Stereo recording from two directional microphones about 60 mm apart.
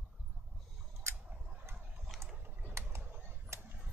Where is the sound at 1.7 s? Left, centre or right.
Centre.